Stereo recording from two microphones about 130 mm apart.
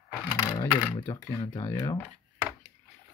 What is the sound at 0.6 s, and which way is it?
Speech, 15° left (ahead or behind).